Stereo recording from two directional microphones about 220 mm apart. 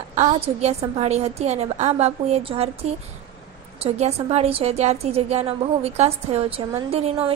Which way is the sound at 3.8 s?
30° right (ahead or behind).